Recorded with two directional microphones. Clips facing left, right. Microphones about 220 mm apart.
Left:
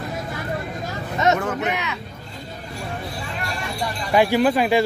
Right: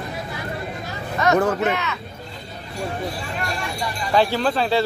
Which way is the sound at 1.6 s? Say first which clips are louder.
Right 3 dB; 15° left (ahead or behind).